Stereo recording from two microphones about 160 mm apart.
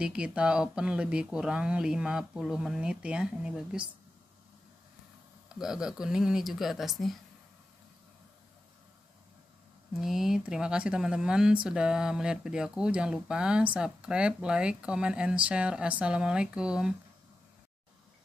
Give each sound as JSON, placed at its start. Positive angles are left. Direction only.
{"t": 0.0, "sound": "speech", "side_deg": -5}
{"t": 5.5, "sound": "speech", "side_deg": -5}
{"t": 9.9, "sound": "speech", "side_deg": 0}